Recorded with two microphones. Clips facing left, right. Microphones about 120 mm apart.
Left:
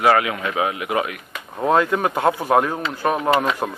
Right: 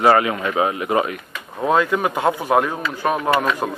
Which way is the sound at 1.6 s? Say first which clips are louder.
Even; 5° right (ahead or behind).